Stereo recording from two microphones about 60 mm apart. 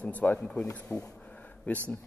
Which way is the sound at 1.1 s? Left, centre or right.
Left.